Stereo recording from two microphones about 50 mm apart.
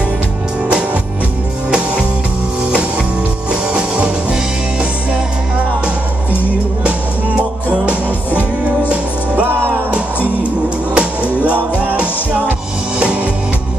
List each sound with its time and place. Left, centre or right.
3.7 s music: right
7.3 s music: right
9.5 s music: right
11.0 s music: right